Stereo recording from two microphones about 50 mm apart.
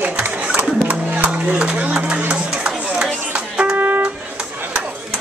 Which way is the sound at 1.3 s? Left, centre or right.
Right.